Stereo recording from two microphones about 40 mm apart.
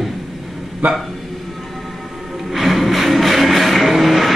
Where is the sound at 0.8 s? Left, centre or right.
Right.